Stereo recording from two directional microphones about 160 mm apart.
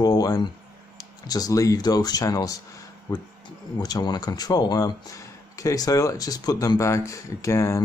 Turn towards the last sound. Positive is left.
turn(degrees=15)  # may be behind; listen again after turning